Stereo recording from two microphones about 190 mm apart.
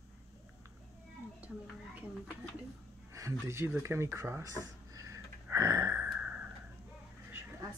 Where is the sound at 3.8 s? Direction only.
15° right (ahead or behind).